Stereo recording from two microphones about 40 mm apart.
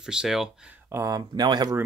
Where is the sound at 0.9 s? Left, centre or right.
Right.